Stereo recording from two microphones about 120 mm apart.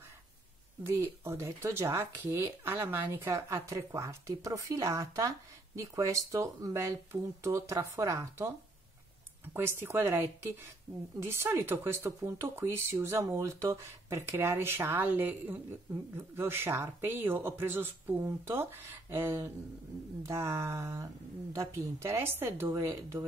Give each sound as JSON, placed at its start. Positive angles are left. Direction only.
{"t": 0.8, "sound": "speech", "side_deg": -20}